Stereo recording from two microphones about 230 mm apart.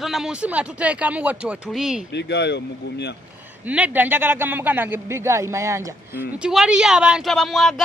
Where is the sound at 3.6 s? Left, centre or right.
Centre.